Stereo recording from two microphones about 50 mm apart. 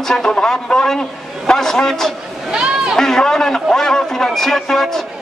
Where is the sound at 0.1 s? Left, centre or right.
Centre.